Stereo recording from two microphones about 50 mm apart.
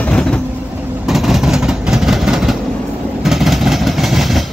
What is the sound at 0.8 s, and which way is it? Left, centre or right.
Vehicle, right.